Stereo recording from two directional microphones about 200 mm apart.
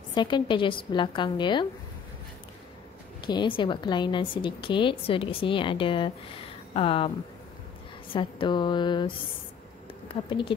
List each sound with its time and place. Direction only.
0.1 s a woman's voice: 25° left (ahead or behind)
3.3 s a woman's voice: 25° left (ahead or behind)
8.1 s a woman's voice: 25° left (ahead or behind)